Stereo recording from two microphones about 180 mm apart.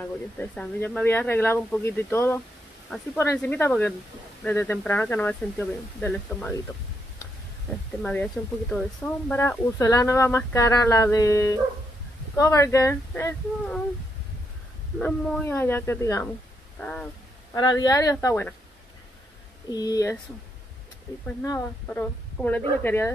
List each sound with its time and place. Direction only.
0.0 s speech: 10° left (ahead or behind)
8.0 s speech: 5° left (ahead or behind)
15.0 s speech: 5° left (ahead or behind)
16.8 s speech: 5° left (ahead or behind)
17.6 s speech: 20° left (ahead or behind)
19.7 s speech: 20° left (ahead or behind)
21.4 s speech: 10° left (ahead or behind)